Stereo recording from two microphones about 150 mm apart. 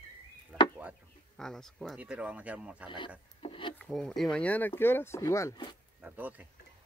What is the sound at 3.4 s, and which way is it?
Wood, 35° left (ahead or behind).